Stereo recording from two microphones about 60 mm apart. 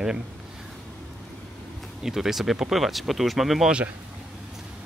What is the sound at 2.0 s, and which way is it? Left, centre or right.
Speech, centre.